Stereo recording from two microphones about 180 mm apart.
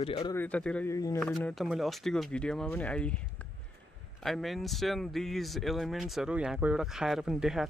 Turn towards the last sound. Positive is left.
turn(degrees=0)  # may be behind; listen again after turning